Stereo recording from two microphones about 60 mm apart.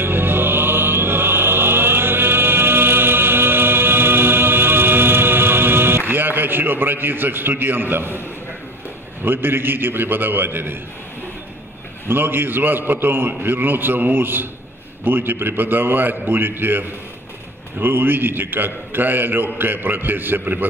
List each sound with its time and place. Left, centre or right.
0.0 s music: right
9.2 s a man's voice: right
12.1 s a man's voice: right